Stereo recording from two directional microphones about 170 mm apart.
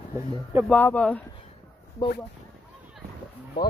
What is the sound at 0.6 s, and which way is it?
Speech, 10° left (ahead or behind).